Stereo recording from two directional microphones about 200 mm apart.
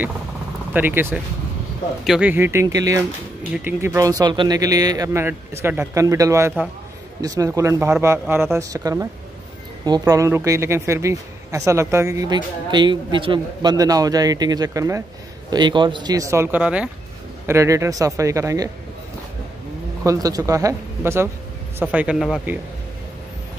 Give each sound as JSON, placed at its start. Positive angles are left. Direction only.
{"t": 0.7, "sound": "speech", "side_deg": -10}
{"t": 20.0, "sound": "speech", "side_deg": -15}